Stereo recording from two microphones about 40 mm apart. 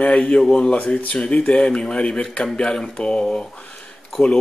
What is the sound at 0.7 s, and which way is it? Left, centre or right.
Speech, left.